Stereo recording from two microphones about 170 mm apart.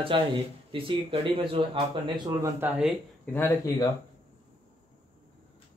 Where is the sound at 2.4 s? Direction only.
10° right (ahead or behind).